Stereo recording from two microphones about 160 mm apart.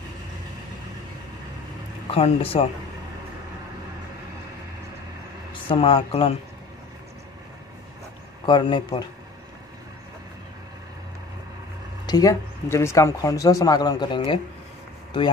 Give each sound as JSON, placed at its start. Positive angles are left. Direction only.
{"t": 2.0, "sound": "speech", "side_deg": 35}
{"t": 5.5, "sound": "speech", "side_deg": 35}
{"t": 8.5, "sound": "speech", "side_deg": 30}
{"t": 12.1, "sound": "speech", "side_deg": 20}